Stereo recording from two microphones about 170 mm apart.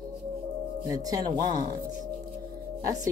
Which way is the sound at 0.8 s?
20° right (ahead or behind).